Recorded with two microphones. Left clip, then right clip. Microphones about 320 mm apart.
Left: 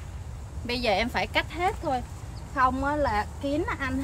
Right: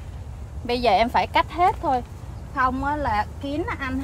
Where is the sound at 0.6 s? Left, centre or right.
Centre.